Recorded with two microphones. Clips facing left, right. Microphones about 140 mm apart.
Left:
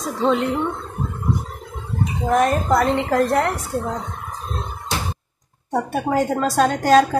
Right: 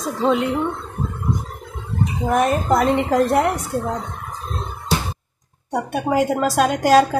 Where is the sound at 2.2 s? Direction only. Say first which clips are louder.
Left 1 dB; 5° right (ahead or behind).